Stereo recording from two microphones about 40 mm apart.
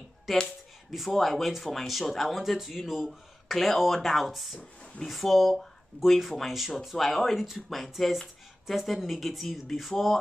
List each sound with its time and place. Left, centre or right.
0.5 s speech: centre